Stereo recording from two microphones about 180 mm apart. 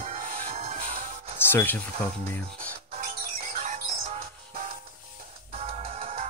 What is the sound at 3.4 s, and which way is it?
Music, 40° right (ahead or behind).